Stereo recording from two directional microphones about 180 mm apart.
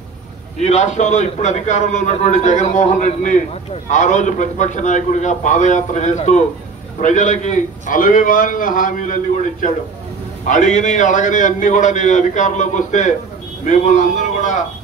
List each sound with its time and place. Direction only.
0.6 s a man's voice: 40° left (ahead or behind)